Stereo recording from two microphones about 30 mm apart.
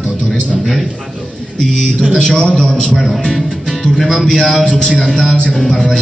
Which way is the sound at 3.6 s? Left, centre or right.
Centre.